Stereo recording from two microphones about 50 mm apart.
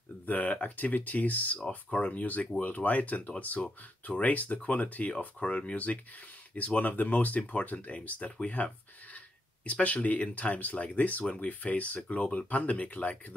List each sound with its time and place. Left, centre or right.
0.3 s speech: left
9.7 s speech: left